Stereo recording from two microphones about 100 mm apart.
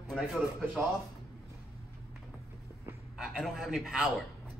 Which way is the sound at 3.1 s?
5° right (ahead or behind).